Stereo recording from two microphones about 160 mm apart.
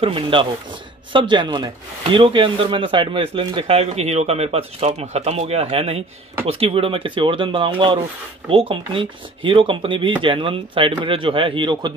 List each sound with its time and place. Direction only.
0.0 s speech: 35° right (ahead or behind)